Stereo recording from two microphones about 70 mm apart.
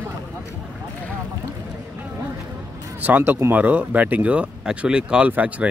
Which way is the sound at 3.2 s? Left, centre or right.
Right.